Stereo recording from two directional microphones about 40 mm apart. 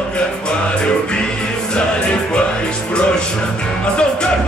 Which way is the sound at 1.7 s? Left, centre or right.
Left.